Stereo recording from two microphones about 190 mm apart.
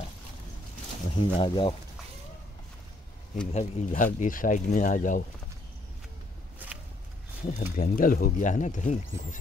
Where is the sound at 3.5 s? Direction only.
40° left (ahead or behind).